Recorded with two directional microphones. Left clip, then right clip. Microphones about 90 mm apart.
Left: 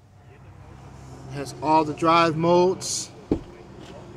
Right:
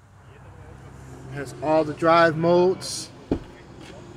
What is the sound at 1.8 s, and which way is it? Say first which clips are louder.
Speech: right 6 dB; 15° left (ahead or behind).